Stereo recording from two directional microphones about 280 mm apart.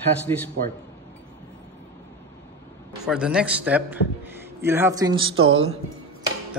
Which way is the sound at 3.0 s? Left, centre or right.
Centre.